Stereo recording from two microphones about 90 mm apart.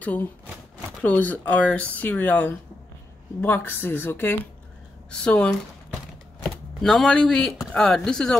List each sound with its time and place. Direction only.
0.0 s a woman's voice: 15° left (ahead or behind)
5.1 s speech: 10° left (ahead or behind)
6.8 s speech: 5° left (ahead or behind)